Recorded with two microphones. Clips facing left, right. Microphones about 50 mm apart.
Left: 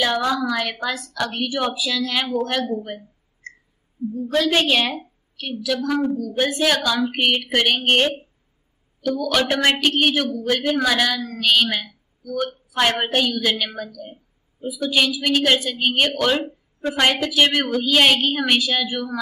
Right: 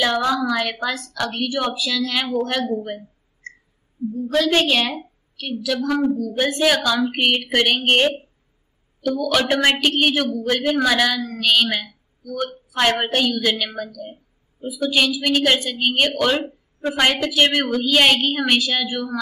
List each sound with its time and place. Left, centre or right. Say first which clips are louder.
0.0 s a woman's voice: right 1 dB; centre
4.3 s a woman's voice: right 1 dB; centre